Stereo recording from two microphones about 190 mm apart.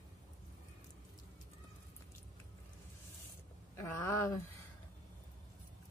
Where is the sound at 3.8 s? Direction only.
15° left (ahead or behind).